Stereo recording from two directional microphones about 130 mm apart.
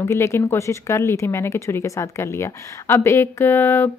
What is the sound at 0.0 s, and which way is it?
A woman's voice, 20° left (ahead or behind).